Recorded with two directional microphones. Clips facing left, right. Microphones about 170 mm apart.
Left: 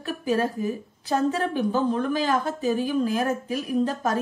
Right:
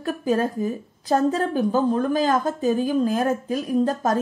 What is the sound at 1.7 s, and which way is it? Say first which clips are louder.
Speech: right 4 dB; 40° right (ahead or behind).